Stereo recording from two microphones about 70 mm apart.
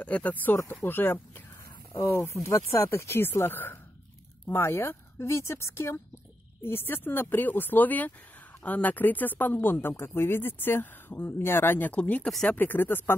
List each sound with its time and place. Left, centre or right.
0.0 s speech: left